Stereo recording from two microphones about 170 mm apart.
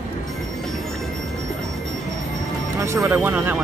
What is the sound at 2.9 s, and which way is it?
Speech, 15° right (ahead or behind).